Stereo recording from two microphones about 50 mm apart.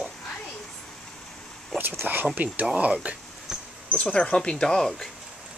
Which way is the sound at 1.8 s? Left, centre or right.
Right.